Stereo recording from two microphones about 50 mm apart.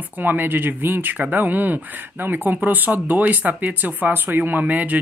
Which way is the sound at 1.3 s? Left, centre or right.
Right.